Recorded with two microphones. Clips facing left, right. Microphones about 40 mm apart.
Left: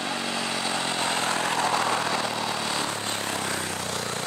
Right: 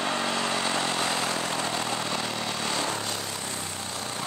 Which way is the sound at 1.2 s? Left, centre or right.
Left.